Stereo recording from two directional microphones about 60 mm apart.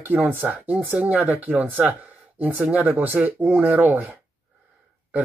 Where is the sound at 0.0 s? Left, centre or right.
Right.